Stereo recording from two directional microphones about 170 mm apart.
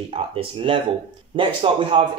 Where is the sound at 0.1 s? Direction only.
30° right (ahead or behind).